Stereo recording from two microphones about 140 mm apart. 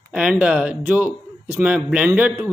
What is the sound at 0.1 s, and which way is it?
Speech, 5° right (ahead or behind).